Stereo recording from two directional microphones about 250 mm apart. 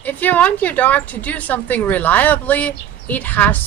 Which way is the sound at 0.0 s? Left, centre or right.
Centre.